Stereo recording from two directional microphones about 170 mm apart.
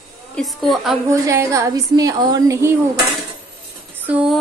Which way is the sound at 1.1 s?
15° right (ahead or behind).